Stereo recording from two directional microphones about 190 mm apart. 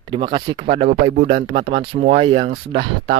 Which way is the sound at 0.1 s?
25° right (ahead or behind).